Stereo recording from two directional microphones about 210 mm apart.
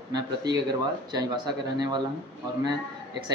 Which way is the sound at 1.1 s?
20° right (ahead or behind).